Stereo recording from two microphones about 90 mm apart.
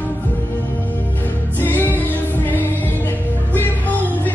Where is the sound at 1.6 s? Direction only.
20° left (ahead or behind).